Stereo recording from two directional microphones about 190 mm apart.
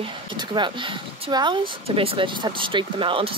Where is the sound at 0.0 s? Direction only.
25° right (ahead or behind).